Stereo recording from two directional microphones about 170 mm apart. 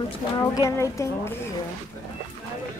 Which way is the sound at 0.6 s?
15° left (ahead or behind).